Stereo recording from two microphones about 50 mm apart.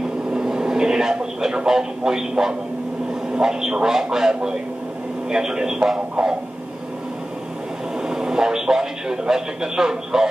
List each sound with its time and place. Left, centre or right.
0.3 s a man's voice: centre
8.0 s a man's voice: centre